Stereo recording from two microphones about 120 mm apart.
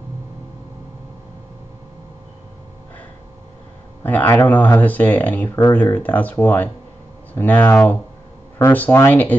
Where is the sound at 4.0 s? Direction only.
15° left (ahead or behind).